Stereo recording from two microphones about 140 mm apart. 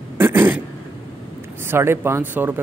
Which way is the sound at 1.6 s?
15° right (ahead or behind).